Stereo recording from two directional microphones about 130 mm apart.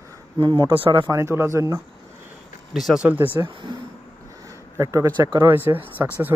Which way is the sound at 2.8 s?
5° right (ahead or behind).